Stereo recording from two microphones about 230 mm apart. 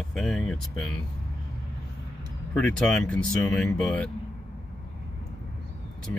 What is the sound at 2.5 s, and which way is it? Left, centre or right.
Speech, centre.